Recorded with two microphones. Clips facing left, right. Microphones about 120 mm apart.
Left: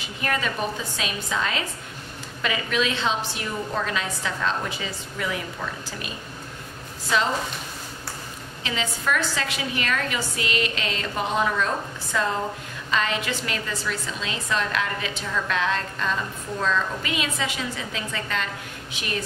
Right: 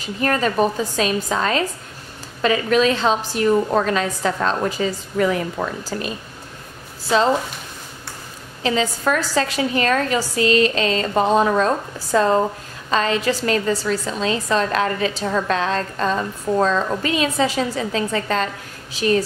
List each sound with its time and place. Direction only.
0.0 s a woman's voice: 40° right (ahead or behind)
8.6 s a woman's voice: 35° right (ahead or behind)